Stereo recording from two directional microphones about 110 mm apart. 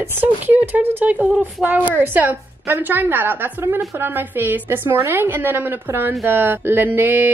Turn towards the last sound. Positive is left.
turn(degrees=-20)  # may be behind; listen again after turning